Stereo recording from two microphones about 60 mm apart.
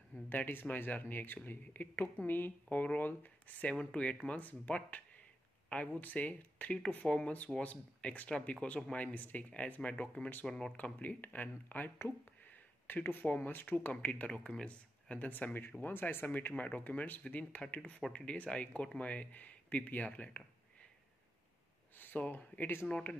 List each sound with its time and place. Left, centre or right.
0.3 s speech: left; by 10.7 s centre
10.8 s speech: left
14.3 s speech: centre
21.9 s speech: left